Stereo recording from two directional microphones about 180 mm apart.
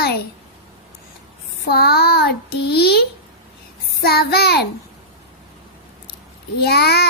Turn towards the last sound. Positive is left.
turn(degrees=65)  # may be behind; listen again after turning